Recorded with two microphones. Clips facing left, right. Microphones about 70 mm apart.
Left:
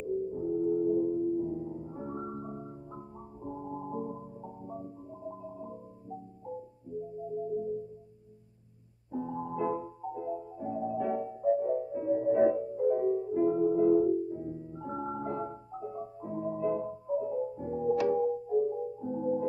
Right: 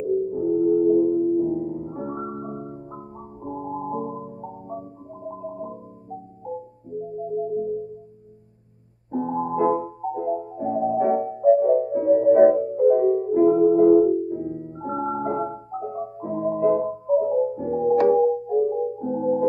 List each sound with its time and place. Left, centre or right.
0.0 s music: right
9.1 s music: right